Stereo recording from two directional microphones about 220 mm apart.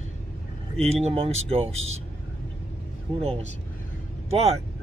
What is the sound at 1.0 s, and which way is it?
Speech, 30° right (ahead or behind).